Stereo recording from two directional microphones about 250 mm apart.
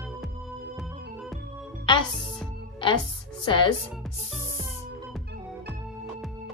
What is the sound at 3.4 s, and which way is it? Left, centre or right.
Speech, centre.